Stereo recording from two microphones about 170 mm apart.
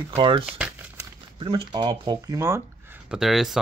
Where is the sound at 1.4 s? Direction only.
30° right (ahead or behind).